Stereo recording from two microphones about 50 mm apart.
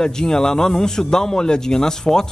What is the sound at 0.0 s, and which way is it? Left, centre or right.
Speech, centre.